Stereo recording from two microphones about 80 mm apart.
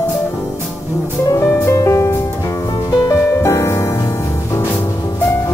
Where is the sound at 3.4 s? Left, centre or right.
Left.